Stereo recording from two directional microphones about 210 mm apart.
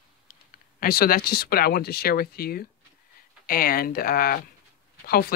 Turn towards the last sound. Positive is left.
turn(degrees=45)  # may be behind; listen again after turning